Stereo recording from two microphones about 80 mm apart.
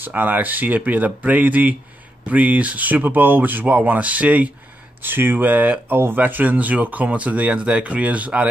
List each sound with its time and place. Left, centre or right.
0.0 s speech: right